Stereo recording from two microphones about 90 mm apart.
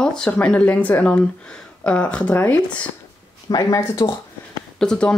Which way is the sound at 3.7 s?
40° left (ahead or behind).